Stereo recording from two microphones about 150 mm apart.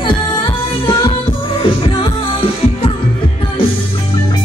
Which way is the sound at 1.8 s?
35° left (ahead or behind).